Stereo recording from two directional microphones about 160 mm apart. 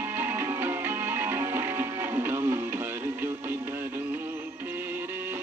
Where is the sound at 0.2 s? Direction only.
15° right (ahead or behind).